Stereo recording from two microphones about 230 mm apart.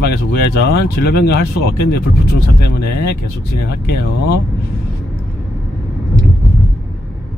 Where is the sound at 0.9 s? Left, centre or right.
Left.